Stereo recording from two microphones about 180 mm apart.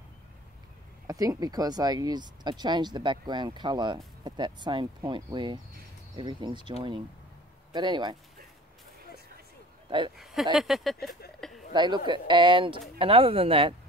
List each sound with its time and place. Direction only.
1.0 s speech: 20° right (ahead or behind)
7.7 s speech: 25° right (ahead or behind)
9.8 s speech: 25° right (ahead or behind)
10.1 s speech: centre (ahead or behind)
11.1 s speech: 60° left (ahead or behind)
11.7 s speech: 25° right (ahead or behind)